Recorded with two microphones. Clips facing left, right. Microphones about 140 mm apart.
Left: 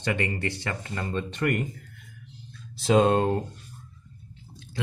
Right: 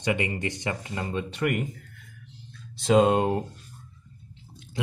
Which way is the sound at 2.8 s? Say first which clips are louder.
Even; 5° right (ahead or behind).